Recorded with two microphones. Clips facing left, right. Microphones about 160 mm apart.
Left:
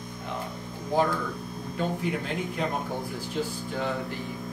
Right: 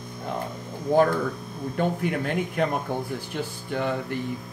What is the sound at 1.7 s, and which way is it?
Speech, 55° right (ahead or behind).